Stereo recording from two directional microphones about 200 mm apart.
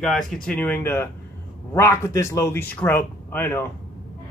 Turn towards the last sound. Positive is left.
turn(degrees=10)  # may be behind; listen again after turning